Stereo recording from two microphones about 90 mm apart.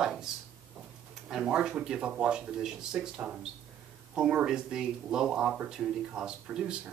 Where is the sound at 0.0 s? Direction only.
10° right (ahead or behind).